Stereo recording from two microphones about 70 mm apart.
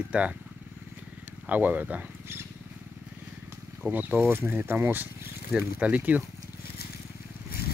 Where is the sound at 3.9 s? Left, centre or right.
Right.